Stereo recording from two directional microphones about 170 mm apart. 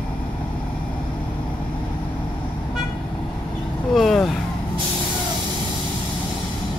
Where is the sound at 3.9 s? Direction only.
Centre (ahead or behind).